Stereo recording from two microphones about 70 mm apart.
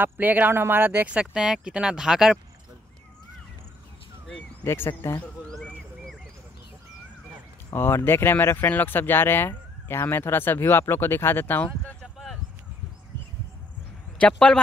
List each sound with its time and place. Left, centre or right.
0.0 s speech: right
1.2 s speech: centre
4.6 s speech: left
7.7 s speech: left
14.2 s speech: centre